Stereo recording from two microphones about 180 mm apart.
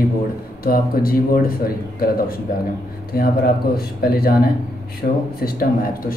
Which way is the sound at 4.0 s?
55° left (ahead or behind).